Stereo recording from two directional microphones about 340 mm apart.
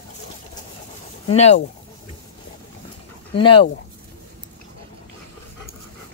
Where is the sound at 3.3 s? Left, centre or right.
Centre.